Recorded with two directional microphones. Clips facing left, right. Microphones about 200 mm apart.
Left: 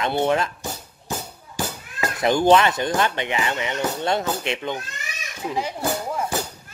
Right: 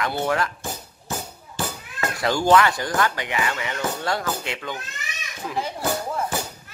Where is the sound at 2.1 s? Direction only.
20° left (ahead or behind).